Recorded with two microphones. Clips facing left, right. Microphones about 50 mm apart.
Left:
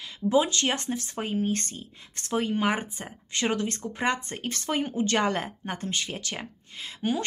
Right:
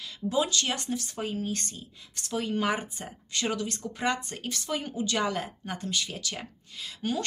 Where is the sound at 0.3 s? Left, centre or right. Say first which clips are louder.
Left 4 dB; left.